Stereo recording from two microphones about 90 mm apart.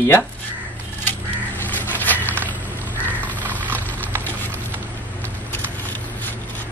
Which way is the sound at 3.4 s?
20° right (ahead or behind).